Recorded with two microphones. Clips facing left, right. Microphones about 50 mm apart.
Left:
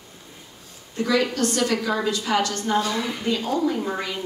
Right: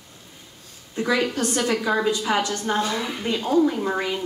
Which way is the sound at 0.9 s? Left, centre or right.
Centre.